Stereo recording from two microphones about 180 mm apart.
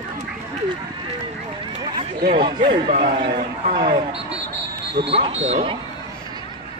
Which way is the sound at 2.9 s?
45° right (ahead or behind).